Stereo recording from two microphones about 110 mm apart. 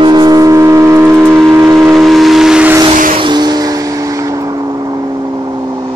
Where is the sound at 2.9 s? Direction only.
50° right (ahead or behind).